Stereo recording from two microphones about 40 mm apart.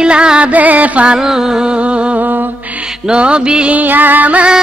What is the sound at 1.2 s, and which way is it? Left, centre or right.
Music, centre.